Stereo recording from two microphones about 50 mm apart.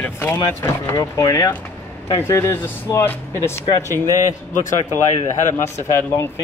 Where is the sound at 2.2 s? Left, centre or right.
Left.